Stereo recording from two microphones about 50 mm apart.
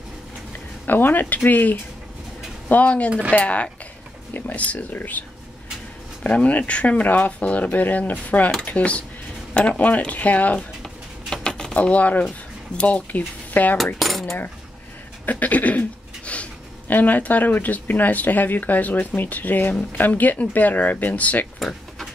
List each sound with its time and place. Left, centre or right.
0.8 s speech: left
6.2 s speech: left
11.4 s speech: centre; by 13.7 s left
13.9 s cutlery: centre
15.2 s a sound: left
16.8 s speech: left
21.5 s a sound: centre